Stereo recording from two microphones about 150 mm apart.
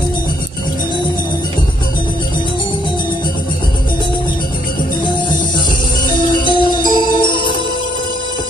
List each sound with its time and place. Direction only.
6.4 s music: 30° left (ahead or behind)